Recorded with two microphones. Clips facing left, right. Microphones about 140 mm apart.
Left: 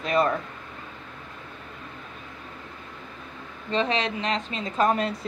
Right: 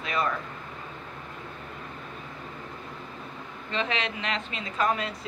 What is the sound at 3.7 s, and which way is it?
A woman's voice, 35° left (ahead or behind).